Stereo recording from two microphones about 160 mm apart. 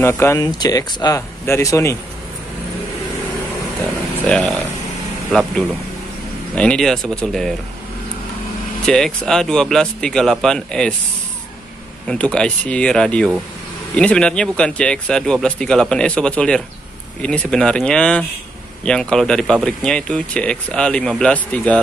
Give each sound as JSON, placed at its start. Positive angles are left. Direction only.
{"t": 0.0, "sound": "speech", "side_deg": 15}
{"t": 4.3, "sound": "speech", "side_deg": 0}
{"t": 8.8, "sound": "speech", "side_deg": 5}
{"t": 12.1, "sound": "speech", "side_deg": 5}